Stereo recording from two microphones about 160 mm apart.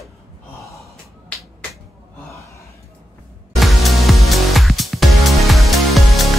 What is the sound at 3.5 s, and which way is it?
Music, centre (ahead or behind).